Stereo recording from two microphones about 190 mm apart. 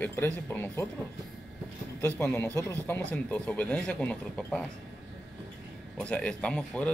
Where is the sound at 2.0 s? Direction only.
10° left (ahead or behind).